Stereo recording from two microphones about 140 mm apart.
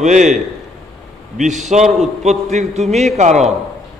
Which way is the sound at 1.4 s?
60° right (ahead or behind).